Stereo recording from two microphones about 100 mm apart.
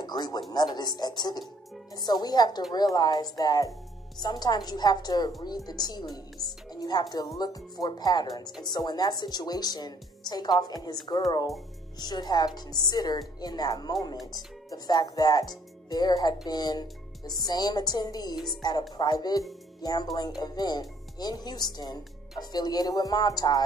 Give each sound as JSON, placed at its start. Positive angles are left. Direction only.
{"t": 0.0, "sound": "a woman's voice", "side_deg": 45}
{"t": 12.0, "sound": "a woman's voice", "side_deg": 45}